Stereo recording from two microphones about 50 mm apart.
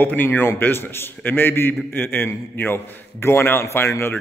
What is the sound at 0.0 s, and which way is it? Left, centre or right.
A man's voice, left.